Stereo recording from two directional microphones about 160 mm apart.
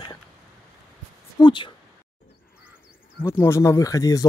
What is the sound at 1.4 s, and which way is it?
Speech, 30° left (ahead or behind).